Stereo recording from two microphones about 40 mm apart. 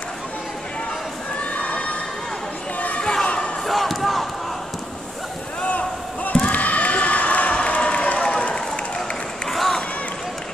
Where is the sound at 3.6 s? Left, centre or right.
Centre.